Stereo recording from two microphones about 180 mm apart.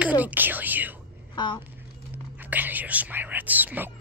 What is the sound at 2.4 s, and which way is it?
Speech, 10° right (ahead or behind).